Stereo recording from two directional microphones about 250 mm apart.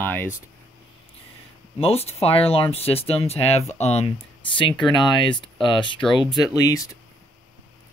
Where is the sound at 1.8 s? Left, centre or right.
Left.